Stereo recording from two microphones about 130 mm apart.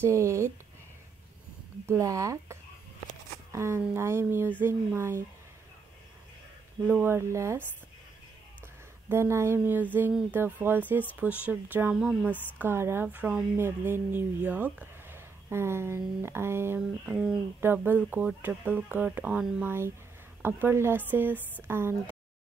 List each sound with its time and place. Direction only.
0.0 s speech: 20° right (ahead or behind)
1.9 s speech: 25° right (ahead or behind)
6.9 s speech: 15° right (ahead or behind)
9.1 s speech: 20° right (ahead or behind)
17.1 s speech: 5° right (ahead or behind)
17.6 s speech: 15° right (ahead or behind)